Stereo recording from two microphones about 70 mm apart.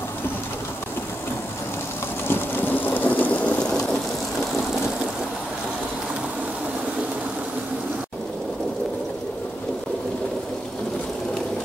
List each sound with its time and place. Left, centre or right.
2.2 s rain: left; by 4.0 s centre